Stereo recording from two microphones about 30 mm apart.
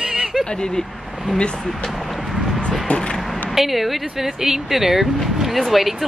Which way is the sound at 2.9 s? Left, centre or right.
Left.